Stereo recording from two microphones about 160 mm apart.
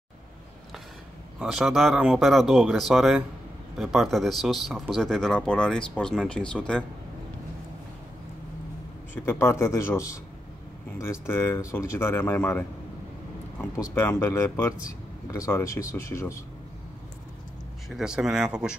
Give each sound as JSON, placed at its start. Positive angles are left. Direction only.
{"t": 1.4, "sound": "speech", "side_deg": 0}
{"t": 9.1, "sound": "speech", "side_deg": 15}
{"t": 13.8, "sound": "speech", "side_deg": 15}
{"t": 17.8, "sound": "speech", "side_deg": -5}